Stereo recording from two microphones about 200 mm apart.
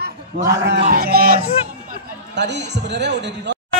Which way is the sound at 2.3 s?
60° right (ahead or behind).